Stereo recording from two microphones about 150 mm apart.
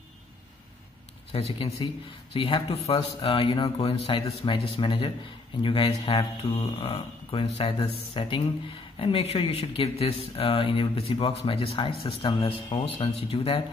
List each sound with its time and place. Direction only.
1.3 s speech: 40° left (ahead or behind)